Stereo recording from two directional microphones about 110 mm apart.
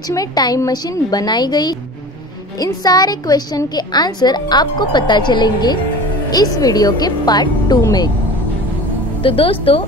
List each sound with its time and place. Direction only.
0.1 s a woman's voice: 35° left (ahead or behind)
9.2 s speech: 55° left (ahead or behind)